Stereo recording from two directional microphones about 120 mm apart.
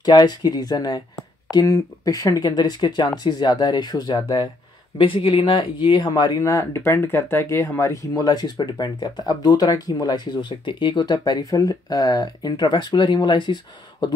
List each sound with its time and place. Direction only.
0.0 s speech: 35° left (ahead or behind)